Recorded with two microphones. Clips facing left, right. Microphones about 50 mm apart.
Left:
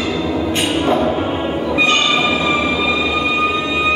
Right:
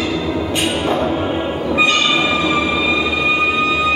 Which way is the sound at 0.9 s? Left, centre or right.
Centre.